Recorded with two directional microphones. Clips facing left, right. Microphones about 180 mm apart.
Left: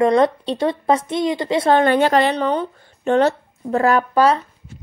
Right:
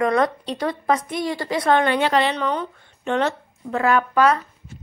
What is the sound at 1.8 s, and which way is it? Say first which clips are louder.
Speech: left 4 dB; 45° left (ahead or behind).